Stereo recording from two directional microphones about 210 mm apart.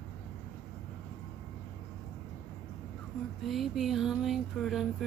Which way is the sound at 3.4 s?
Centre (ahead or behind).